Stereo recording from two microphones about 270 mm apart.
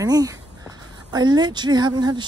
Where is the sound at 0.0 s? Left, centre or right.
Centre.